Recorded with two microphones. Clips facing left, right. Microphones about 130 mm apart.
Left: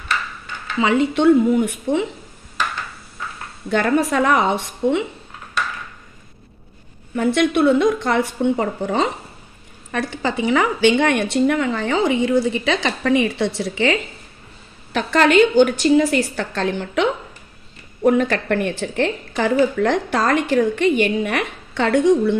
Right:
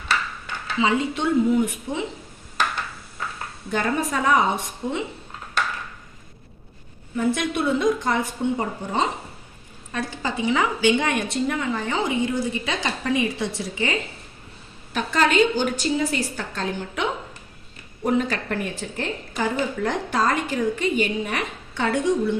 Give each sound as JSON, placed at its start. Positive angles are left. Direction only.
{"t": 0.7, "sound": "a woman's voice", "side_deg": 65}
{"t": 3.7, "sound": "a woman's voice", "side_deg": 70}
{"t": 7.2, "sound": "a woman's voice", "side_deg": 70}
{"t": 18.0, "sound": "a woman's voice", "side_deg": 60}